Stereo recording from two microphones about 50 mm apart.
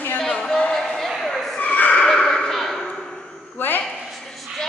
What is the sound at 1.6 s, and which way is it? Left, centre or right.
Neigh, left.